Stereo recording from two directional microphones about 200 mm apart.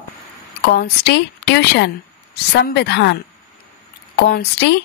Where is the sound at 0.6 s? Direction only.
55° left (ahead or behind).